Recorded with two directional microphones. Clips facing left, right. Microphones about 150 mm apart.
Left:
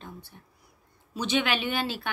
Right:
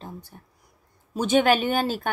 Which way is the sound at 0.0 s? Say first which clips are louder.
Right 4 dB; 40° right (ahead or behind).